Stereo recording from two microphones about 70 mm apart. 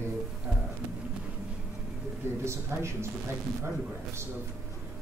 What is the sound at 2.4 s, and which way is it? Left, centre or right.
Speech, right.